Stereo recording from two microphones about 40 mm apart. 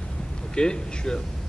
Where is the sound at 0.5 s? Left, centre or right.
Left.